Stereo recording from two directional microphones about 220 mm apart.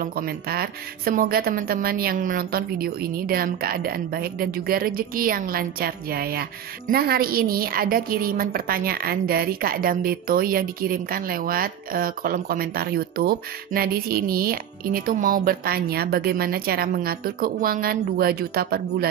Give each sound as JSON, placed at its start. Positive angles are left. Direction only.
{"t": 0.0, "sound": "a woman's voice", "side_deg": -45}